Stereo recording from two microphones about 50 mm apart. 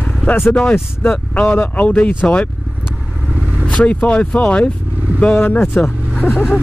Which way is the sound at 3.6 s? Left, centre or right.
Left.